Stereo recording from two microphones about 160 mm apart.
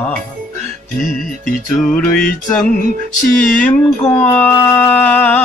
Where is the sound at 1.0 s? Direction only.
Centre (ahead or behind).